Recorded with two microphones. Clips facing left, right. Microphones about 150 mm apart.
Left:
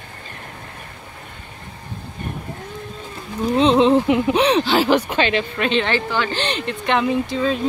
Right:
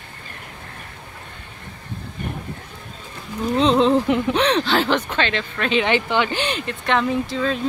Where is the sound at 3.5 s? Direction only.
Centre (ahead or behind).